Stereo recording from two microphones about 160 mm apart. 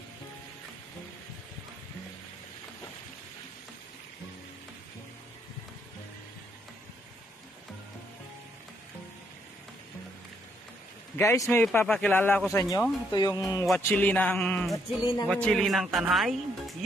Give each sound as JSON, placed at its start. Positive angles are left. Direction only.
{"t": 11.1, "sound": "speech", "side_deg": 15}
{"t": 12.5, "sound": "music", "side_deg": 20}
{"t": 13.7, "sound": "speech", "side_deg": 10}